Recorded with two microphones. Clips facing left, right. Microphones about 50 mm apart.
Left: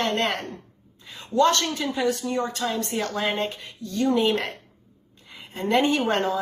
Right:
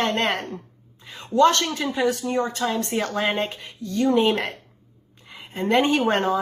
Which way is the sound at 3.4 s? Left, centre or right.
Right.